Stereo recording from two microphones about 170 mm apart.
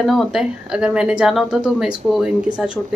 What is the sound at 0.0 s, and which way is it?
Speech, centre (ahead or behind).